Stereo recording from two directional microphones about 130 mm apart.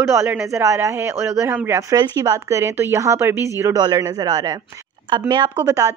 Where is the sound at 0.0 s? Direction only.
20° right (ahead or behind).